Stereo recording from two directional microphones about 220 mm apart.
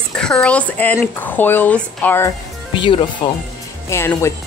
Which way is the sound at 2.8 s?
20° left (ahead or behind).